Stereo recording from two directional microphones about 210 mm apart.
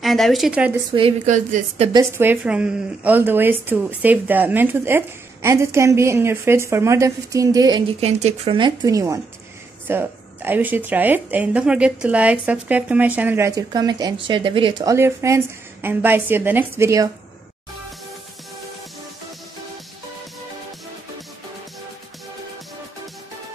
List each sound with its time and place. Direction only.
0.0 s speech: centre (ahead or behind)
0.9 s a woman's voice: 30° right (ahead or behind)
1.9 s a woman's voice: 15° right (ahead or behind)
8.0 s a woman's voice: 30° right (ahead or behind); by 17.1 s 15° right (ahead or behind)